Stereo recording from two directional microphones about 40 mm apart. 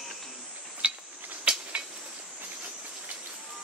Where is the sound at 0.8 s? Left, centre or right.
Right.